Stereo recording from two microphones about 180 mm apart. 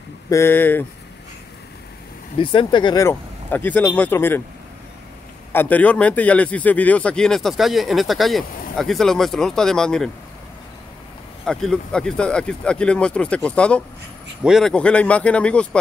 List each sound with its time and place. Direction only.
0.3 s speech: 15° left (ahead or behind)
2.3 s speech: 30° left (ahead or behind); by 4.4 s 10° left (ahead or behind)
5.5 s a man's voice: 10° left (ahead or behind)
11.4 s a man's voice: 5° left (ahead or behind)